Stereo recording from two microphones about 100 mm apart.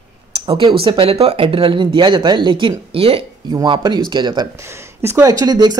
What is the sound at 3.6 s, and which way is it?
Speech, 50° right (ahead or behind).